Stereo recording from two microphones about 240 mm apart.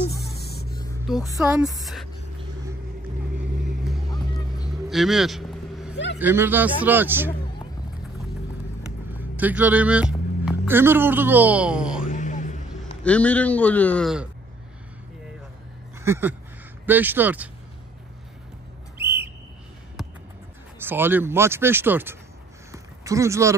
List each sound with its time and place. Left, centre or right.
1.0 s a man's voice: centre
1.8 s a man's voice: centre
3.8 s music: centre
4.6 s vehicle: centre
6.1 s speech: centre
9.1 s speech: centre
12.1 s vehicle: left
13.0 s a man's voice: centre
16.0 s a sound: centre
16.8 s speech: centre
18.9 s a sound: centre
20.0 s music: centre
20.8 s speech: centre
22.7 s a sound: centre